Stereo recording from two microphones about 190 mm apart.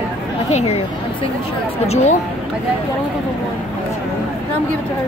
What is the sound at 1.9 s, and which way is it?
Speech, 35° left (ahead or behind).